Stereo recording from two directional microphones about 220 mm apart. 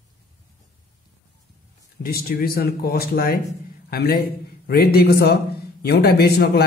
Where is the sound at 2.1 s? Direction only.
45° left (ahead or behind).